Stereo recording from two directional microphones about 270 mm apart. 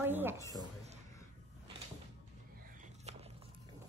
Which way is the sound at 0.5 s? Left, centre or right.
Right.